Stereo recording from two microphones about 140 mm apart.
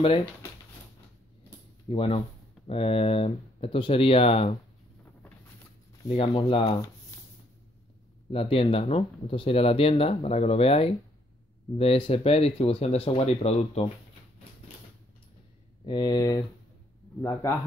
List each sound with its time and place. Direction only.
0.0 s speech: 40° left (ahead or behind)
1.9 s speech: 45° left (ahead or behind)
6.0 s speech: 40° left (ahead or behind)
8.3 s speech: 40° left (ahead or behind)
15.8 s speech: 30° left (ahead or behind)